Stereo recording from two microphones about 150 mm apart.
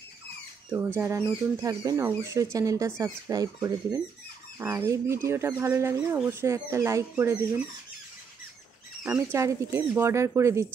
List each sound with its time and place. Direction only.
0.9 s speech: 20° right (ahead or behind)
9.0 s speech: 20° right (ahead or behind)